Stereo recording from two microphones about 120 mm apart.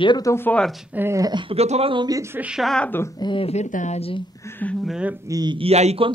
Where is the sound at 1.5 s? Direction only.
60° right (ahead or behind).